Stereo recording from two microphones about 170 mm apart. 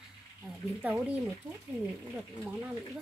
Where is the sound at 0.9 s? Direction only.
5° right (ahead or behind).